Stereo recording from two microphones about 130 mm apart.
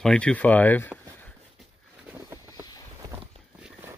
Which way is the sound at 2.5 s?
30° left (ahead or behind).